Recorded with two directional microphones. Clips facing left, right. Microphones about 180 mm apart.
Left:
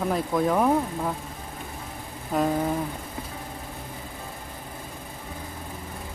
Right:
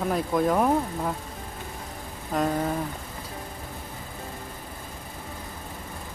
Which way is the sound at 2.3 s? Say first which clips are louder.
Left 2 dB; 5° left (ahead or behind).